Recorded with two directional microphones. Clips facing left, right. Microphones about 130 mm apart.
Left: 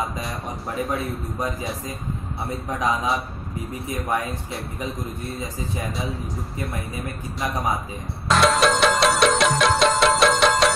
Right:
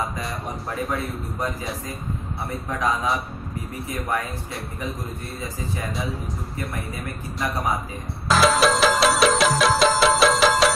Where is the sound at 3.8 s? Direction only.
20° left (ahead or behind).